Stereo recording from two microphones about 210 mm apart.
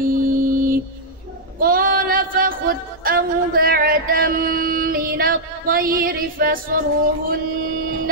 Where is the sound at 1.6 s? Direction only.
45° right (ahead or behind).